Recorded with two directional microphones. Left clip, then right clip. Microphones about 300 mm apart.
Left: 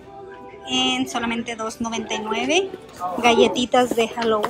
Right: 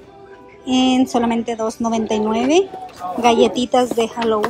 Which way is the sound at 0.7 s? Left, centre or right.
Centre.